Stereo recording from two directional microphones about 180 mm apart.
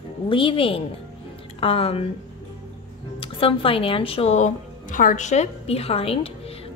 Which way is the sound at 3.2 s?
30° left (ahead or behind).